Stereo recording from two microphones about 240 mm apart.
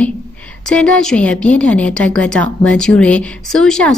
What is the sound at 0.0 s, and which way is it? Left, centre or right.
A woman's voice, centre.